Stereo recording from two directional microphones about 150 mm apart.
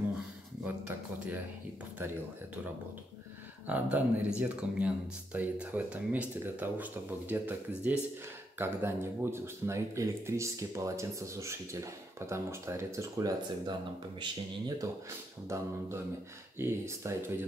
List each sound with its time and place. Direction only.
0.7 s speech: 10° right (ahead or behind)
3.6 s speech: 10° right (ahead or behind)
15.4 s speech: 20° right (ahead or behind)